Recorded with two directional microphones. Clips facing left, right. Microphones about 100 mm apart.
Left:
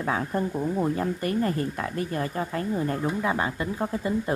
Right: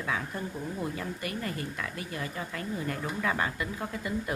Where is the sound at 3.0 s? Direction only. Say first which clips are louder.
Left 5 dB; 20° left (ahead or behind).